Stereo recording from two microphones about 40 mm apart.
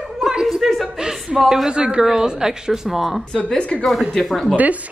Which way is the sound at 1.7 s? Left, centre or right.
Right.